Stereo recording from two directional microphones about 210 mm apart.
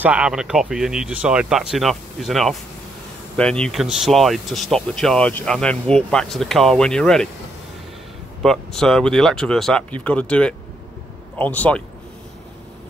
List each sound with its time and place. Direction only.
0.0 s speech: 5° right (ahead or behind)
8.4 s speech: centre (ahead or behind)